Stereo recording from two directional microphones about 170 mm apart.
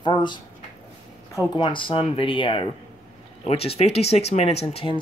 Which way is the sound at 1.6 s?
30° left (ahead or behind).